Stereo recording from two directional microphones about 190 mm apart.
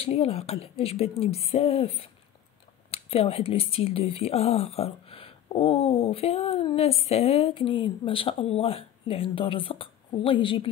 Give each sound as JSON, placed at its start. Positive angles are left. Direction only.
{"t": 0.0, "sound": "speech", "side_deg": 35}